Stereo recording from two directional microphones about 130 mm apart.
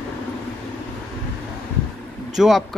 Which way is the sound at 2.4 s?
Centre (ahead or behind).